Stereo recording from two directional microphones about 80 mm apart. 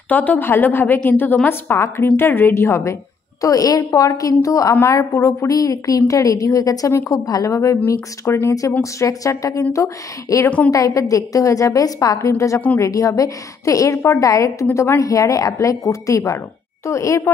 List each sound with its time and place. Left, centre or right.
0.1 s a woman's voice: left